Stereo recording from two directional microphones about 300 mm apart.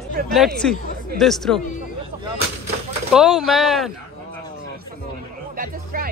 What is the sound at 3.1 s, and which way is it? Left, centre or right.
Speech, centre.